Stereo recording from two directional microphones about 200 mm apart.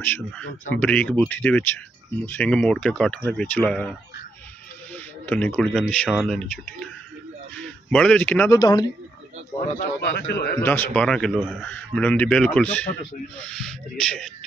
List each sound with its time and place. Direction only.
0.0 s speech: 10° left (ahead or behind)
4.9 s speech: 5° left (ahead or behind)
8.5 s speech: 20° left (ahead or behind)
10.1 s a man's voice: 60° left (ahead or behind)
10.6 s speech: 10° left (ahead or behind)